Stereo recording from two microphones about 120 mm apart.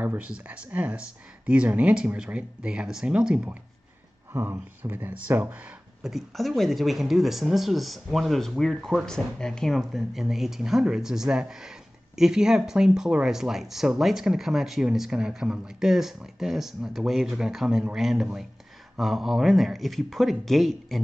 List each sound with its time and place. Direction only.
0.0 s speech: 15° right (ahead or behind)
4.3 s speech: 20° right (ahead or behind)
6.0 s speech: centre (ahead or behind)